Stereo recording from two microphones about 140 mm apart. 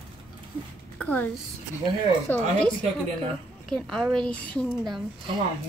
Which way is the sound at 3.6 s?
Centre (ahead or behind).